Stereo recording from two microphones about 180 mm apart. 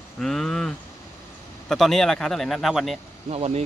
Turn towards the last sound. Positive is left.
turn(degrees=-35)  # may be behind; listen again after turning